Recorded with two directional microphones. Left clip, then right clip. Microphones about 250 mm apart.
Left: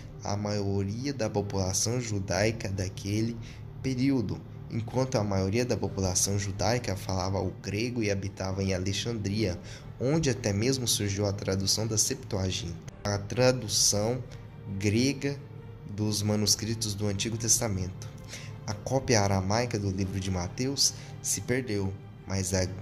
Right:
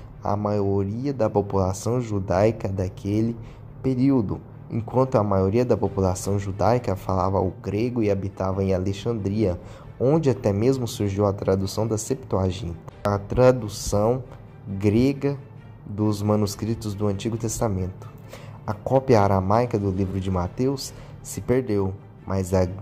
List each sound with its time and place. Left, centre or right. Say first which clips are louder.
0.2 s speech: right 9 dB; centre